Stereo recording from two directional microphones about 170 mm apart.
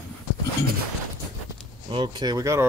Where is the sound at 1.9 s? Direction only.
25° right (ahead or behind).